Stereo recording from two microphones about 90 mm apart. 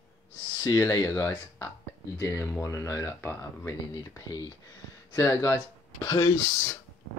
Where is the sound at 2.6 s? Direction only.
30° left (ahead or behind).